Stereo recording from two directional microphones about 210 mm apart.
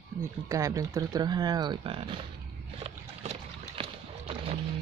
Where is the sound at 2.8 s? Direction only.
30° right (ahead or behind).